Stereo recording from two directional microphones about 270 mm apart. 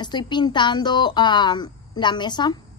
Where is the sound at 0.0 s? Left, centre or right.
Centre.